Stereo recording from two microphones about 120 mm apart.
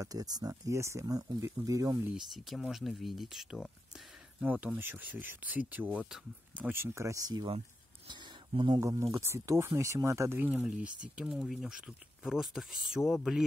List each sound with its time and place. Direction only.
0.0 s speech: 30° right (ahead or behind)
2.0 s speech: 5° right (ahead or behind)
4.4 s speech: 15° right (ahead or behind)
6.7 s speech: 20° right (ahead or behind)
8.1 s a sound: 40° right (ahead or behind)
8.8 s speech: 25° right (ahead or behind); by 13.4 s 5° right (ahead or behind)